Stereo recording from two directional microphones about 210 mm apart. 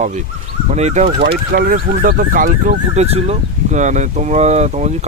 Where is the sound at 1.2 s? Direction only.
45° right (ahead or behind).